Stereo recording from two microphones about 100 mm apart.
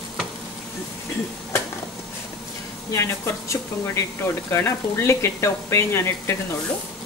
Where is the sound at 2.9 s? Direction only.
30° left (ahead or behind).